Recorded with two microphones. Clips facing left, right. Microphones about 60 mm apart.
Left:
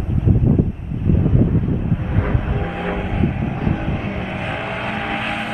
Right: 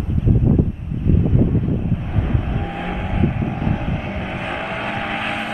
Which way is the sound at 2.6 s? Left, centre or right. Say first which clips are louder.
Left 2 dB; centre.